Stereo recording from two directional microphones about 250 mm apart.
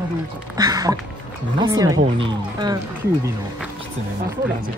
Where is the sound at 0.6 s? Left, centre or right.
Centre.